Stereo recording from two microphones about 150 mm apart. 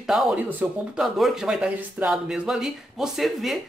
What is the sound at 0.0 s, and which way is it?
Speech, 5° right (ahead or behind).